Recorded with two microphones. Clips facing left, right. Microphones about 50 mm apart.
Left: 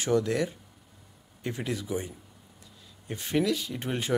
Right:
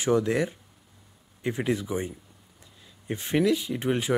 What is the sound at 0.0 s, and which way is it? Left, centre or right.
Speech, centre.